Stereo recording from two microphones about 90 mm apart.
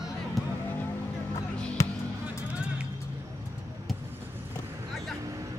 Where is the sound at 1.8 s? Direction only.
35° left (ahead or behind).